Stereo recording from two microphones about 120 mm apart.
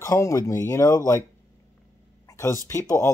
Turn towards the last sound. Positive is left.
turn(degrees=25)  # may be behind; listen again after turning